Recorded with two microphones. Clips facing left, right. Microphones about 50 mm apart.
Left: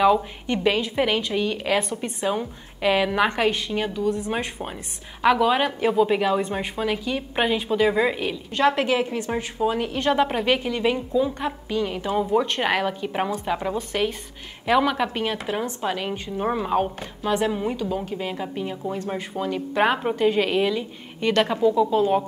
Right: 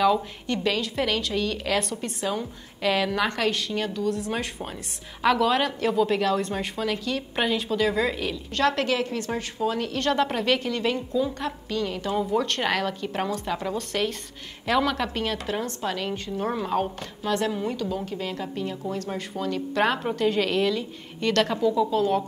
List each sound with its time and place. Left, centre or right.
0.0 s speech: centre